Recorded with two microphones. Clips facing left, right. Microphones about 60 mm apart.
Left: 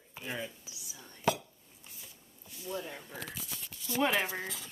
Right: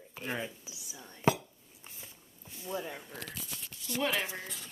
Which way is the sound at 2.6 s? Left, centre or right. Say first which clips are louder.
Right 1 dB; centre.